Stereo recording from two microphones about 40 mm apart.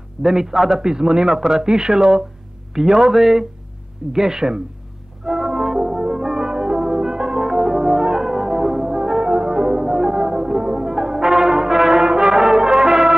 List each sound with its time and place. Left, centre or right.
0.2 s speech: centre
5.2 s french horn: centre
12.6 s brass instrument: centre